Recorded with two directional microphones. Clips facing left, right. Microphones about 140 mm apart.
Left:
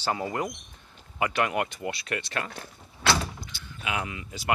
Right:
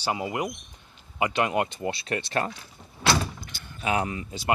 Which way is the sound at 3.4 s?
50° right (ahead or behind).